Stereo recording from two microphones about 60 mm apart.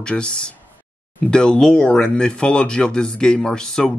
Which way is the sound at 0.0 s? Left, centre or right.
Centre.